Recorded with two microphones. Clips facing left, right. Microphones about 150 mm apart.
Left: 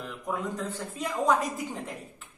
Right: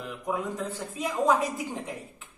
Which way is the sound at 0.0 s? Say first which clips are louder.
Right 2 dB; centre (ahead or behind).